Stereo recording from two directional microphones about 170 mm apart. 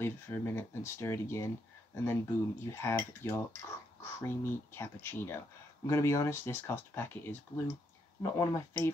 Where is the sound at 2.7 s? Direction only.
15° left (ahead or behind).